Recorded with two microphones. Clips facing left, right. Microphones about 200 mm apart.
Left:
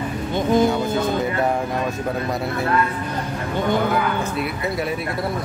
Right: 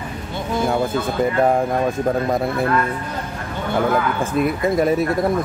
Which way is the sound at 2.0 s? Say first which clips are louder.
Right 5 dB; 50° right (ahead or behind).